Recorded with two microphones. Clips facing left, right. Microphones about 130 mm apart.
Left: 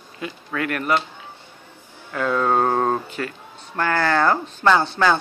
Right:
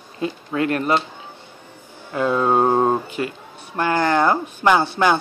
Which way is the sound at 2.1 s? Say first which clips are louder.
Right 2 dB; 20° right (ahead or behind).